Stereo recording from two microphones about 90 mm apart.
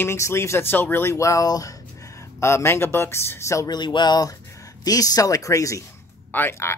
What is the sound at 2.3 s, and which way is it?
Speech, 30° left (ahead or behind).